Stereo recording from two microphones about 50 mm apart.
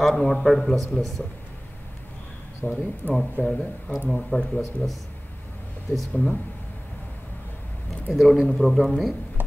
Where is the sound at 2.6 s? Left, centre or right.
Left.